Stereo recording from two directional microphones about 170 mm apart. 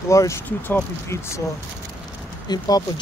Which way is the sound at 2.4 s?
20° left (ahead or behind).